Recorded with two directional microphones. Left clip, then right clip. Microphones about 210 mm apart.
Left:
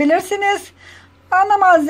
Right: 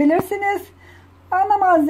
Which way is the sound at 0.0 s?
5° left (ahead or behind).